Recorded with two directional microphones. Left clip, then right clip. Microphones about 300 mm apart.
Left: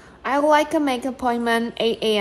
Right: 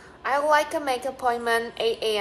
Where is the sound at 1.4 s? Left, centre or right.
Centre.